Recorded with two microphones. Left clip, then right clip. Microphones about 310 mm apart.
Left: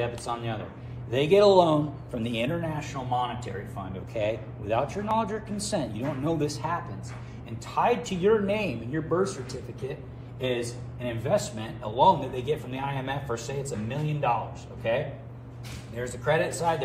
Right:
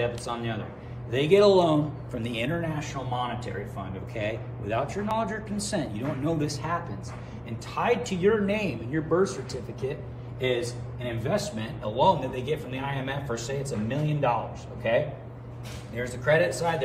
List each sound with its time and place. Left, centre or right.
0.0 s a man's voice: centre